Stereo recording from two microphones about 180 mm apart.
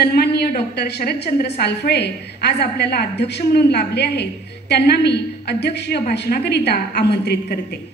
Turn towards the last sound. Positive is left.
turn(degrees=65)  # may be behind; listen again after turning